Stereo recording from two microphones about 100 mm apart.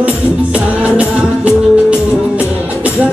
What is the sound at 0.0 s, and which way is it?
Music, 15° right (ahead or behind).